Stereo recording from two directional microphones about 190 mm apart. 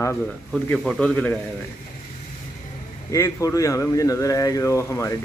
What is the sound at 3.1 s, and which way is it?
Speech, 15° left (ahead or behind).